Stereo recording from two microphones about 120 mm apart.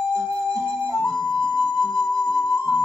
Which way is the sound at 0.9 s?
10° left (ahead or behind).